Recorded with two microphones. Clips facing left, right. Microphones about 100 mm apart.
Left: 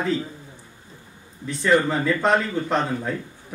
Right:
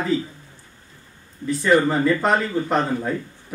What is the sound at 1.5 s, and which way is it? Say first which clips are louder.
Speech: right 2 dB; 5° right (ahead or behind).